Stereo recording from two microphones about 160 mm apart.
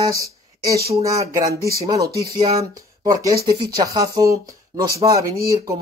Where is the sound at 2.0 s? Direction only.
75° right (ahead or behind).